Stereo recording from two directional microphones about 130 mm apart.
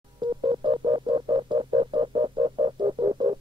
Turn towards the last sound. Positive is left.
turn(degrees=-35)  # may be behind; listen again after turning